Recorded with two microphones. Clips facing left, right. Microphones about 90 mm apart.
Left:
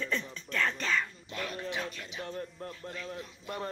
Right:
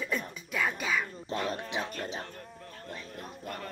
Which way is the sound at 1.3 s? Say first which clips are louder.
Right 4 dB; 35° right (ahead or behind).